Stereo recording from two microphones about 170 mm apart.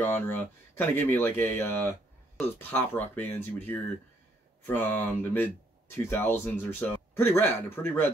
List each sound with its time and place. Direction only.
0.0 s speech: 10° left (ahead or behind)